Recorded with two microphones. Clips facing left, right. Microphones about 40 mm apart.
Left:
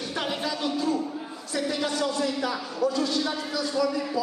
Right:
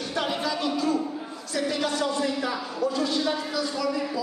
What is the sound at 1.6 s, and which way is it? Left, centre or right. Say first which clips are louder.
Speech: right 1 dB; centre.